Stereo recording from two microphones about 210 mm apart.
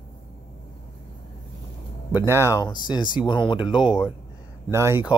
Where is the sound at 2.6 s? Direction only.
20° left (ahead or behind).